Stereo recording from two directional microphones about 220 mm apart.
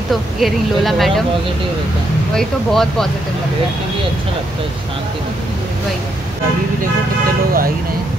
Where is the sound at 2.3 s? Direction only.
Centre (ahead or behind).